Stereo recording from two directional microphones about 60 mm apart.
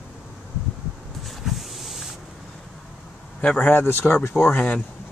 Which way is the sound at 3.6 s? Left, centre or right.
Left.